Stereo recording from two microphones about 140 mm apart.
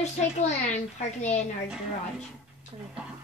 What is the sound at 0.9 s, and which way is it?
Speech, 55° left (ahead or behind).